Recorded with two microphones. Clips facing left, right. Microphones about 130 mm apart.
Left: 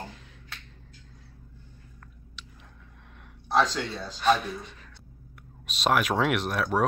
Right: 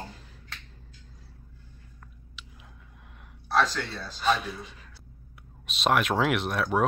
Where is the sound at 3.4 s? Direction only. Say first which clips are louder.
Left 1 dB; 20° left (ahead or behind).